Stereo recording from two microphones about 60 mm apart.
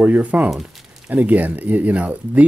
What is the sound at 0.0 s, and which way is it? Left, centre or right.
Speech, right.